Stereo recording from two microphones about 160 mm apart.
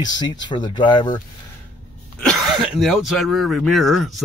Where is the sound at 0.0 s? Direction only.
25° left (ahead or behind).